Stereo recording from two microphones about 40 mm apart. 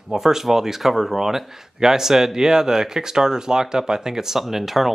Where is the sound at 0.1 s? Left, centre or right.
Centre.